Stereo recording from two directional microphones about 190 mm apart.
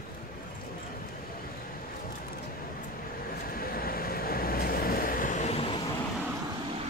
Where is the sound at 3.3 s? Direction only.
50° left (ahead or behind); by 5.8 s 30° left (ahead or behind).